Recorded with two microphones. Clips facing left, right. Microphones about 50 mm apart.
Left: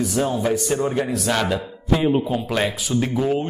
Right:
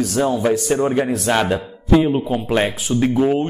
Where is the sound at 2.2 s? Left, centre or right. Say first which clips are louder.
Right 3 dB; right.